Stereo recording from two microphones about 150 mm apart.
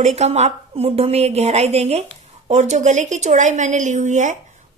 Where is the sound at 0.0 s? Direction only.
45° right (ahead or behind).